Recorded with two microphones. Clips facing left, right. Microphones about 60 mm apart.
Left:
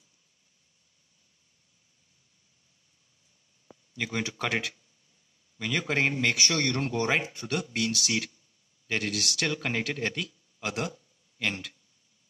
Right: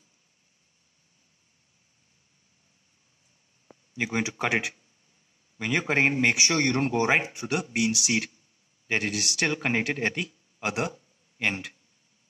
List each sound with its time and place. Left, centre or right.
3.9 s a man's voice: right